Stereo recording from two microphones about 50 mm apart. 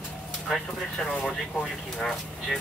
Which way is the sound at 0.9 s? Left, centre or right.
Centre.